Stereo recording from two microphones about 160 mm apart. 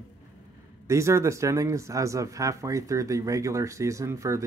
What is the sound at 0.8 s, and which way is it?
Speech, 20° right (ahead or behind).